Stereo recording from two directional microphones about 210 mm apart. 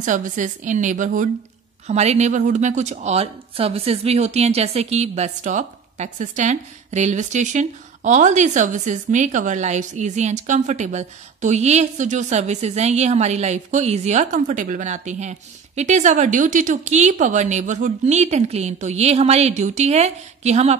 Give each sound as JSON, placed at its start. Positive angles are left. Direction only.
{"t": 0.0, "sound": "a woman's voice", "side_deg": -35}